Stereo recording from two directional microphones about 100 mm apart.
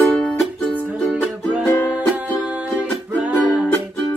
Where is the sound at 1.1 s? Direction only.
15° right (ahead or behind).